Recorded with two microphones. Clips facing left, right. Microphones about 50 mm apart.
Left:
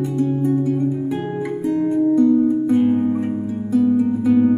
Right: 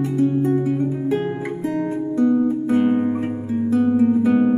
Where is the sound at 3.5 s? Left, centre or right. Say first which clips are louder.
Even; right.